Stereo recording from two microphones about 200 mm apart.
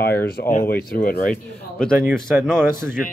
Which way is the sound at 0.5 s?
50° left (ahead or behind).